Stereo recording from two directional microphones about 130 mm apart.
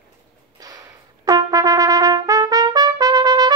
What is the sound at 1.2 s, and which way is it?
Trumpet, 25° right (ahead or behind).